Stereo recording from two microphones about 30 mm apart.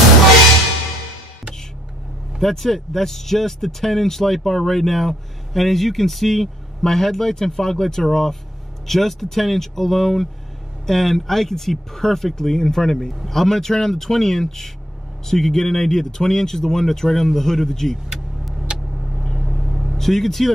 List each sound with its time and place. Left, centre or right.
2.3 s speech: centre
19.4 s vehicle: centre
20.0 s speech: centre